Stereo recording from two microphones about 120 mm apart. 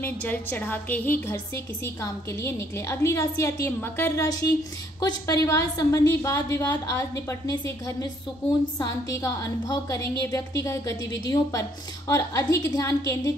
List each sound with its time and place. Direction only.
0.0 s a woman's voice: 15° left (ahead or behind)